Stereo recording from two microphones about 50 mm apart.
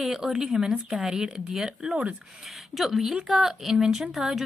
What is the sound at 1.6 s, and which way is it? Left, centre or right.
Speech, right.